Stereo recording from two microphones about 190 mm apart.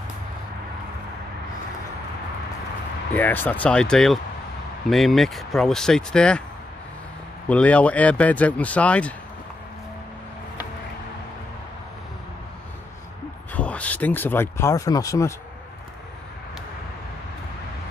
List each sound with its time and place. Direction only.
3.2 s speech: 10° left (ahead or behind)
7.4 s speech: 5° left (ahead or behind)
13.5 s speech: 5° left (ahead or behind)